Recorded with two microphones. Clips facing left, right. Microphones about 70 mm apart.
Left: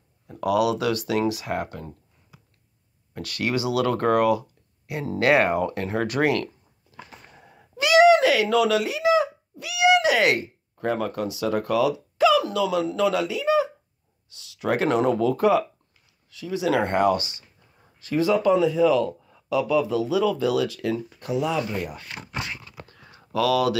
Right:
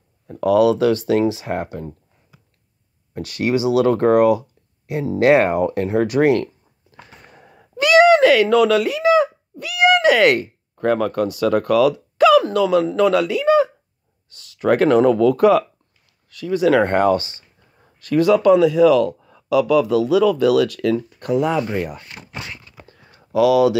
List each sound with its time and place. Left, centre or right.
0.3 s speech: right
3.2 s speech: right
7.2 s a sound: right
14.3 s speech: right
15.1 s speech: right
17.9 s speech: right
22.8 s a sound: right